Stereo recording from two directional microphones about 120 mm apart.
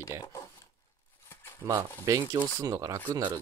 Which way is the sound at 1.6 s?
25° right (ahead or behind).